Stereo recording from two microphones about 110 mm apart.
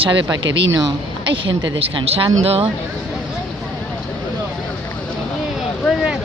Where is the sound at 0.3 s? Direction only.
40° right (ahead or behind); by 2.7 s 60° right (ahead or behind).